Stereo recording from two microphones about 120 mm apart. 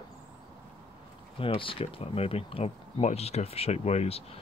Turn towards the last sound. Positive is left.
turn(degrees=55)  # may be behind; listen again after turning